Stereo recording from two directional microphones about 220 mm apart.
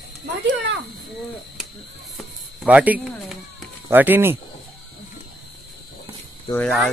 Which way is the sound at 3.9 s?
10° right (ahead or behind).